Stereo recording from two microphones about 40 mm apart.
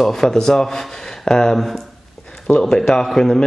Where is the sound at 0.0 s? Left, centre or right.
Centre.